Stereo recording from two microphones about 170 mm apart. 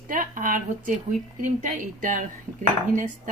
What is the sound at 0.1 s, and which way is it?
Speech, 50° right (ahead or behind).